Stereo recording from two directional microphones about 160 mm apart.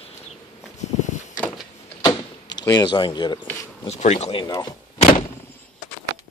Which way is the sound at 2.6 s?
25° left (ahead or behind).